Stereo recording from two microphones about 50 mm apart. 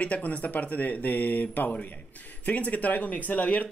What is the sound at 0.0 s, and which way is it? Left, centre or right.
Speech, left.